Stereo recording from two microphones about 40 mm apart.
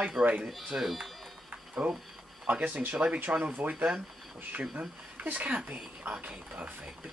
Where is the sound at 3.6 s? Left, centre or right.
Right.